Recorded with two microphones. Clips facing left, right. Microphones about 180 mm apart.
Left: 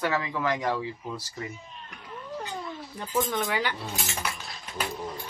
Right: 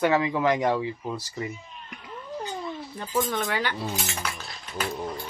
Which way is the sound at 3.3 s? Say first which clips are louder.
Right 1 dB; 10° left (ahead or behind).